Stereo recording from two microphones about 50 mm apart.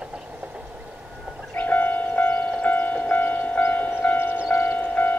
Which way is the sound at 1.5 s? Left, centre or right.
Left.